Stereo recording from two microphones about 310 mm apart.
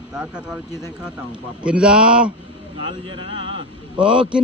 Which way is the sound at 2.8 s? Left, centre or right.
Centre.